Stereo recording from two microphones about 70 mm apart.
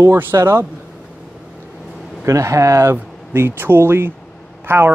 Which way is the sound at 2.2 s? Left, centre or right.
Right.